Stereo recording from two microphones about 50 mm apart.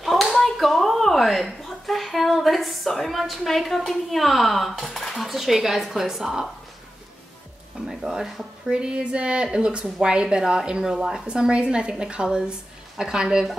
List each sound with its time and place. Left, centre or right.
0.0 s clapping: centre
7.9 s a woman's voice: centre
8.6 s a woman's voice: centre